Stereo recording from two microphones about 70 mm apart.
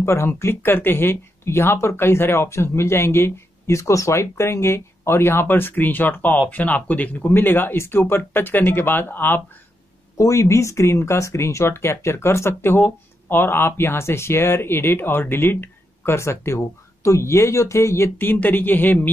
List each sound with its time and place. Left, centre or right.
0.0 s speech: left
10.1 s speech: left